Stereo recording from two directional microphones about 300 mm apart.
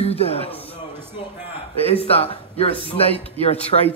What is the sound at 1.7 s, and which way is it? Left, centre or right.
Speech, centre.